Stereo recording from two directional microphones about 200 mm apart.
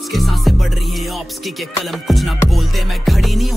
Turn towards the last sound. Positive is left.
turn(degrees=0)  # may be behind; listen again after turning